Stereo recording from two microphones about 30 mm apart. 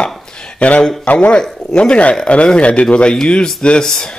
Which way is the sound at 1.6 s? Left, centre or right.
Left.